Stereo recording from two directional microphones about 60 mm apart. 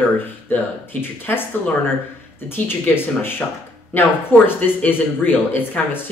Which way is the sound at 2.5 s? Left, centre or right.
Left.